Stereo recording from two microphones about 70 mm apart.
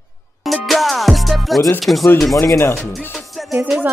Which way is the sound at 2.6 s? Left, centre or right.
Left.